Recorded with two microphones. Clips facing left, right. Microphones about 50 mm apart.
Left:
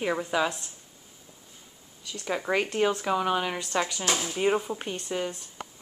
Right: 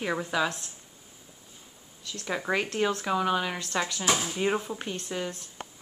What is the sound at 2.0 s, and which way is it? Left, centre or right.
Speech, centre.